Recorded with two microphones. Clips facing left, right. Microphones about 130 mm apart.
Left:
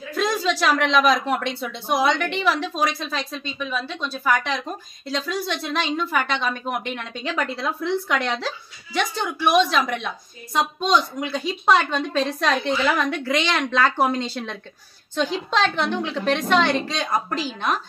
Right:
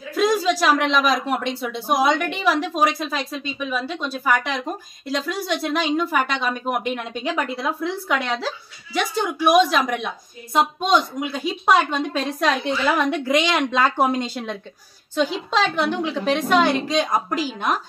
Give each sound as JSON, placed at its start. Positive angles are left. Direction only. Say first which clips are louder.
{"t": 0.1, "sound": "a woman's voice", "louder": "right 4 dB", "side_deg": -10}
{"t": 12.9, "sound": "a woman's voice", "louder": "right 3 dB", "side_deg": -20}